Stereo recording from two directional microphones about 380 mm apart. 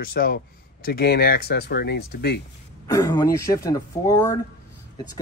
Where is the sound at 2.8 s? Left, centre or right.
Centre.